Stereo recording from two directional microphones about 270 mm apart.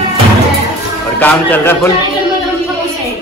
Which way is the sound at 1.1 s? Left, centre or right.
Centre.